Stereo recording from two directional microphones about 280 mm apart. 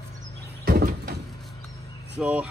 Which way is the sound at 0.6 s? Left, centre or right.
Right.